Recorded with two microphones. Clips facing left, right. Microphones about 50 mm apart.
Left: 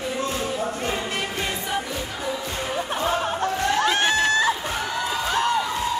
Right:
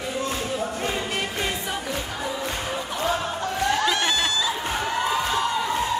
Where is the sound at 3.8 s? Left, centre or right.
Left.